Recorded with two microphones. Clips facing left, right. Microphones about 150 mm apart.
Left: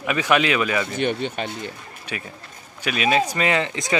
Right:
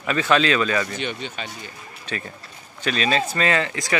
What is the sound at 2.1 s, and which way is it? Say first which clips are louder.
Speech: right 2 dB; 10° left (ahead or behind).